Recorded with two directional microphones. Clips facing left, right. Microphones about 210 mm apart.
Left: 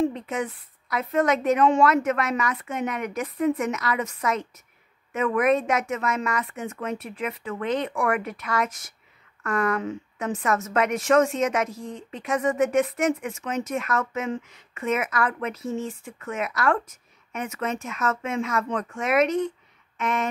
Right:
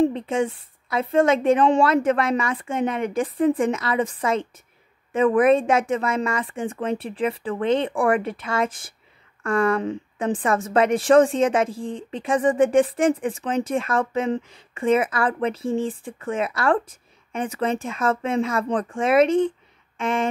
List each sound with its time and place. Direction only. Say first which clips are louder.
0.0 s a woman's voice: right 5 dB; 30° right (ahead or behind)